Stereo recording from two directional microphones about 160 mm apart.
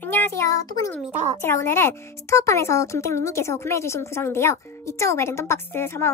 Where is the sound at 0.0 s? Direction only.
15° left (ahead or behind).